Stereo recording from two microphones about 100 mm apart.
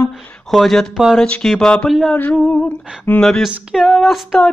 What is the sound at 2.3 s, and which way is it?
Speech, 10° left (ahead or behind).